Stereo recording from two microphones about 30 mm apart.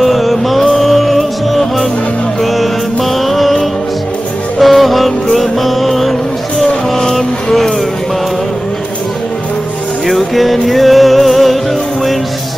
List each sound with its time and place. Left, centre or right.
0.0 s music: centre
4.6 s music: centre
10.0 s music: centre